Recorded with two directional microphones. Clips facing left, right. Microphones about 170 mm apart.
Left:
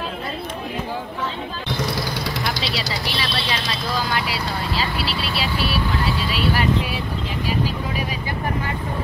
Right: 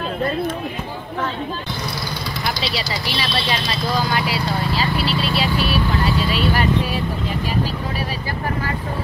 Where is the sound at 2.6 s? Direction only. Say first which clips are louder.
Right 1 dB; centre (ahead or behind).